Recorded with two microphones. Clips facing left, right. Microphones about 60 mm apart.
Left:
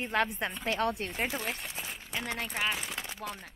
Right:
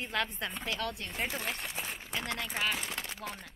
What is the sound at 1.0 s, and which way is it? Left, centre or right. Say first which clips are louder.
Speech: left 2 dB; centre.